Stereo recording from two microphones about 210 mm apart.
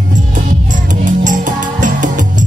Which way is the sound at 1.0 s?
40° right (ahead or behind).